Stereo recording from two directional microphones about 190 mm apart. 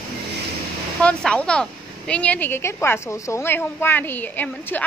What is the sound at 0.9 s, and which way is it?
Speech, 5° left (ahead or behind).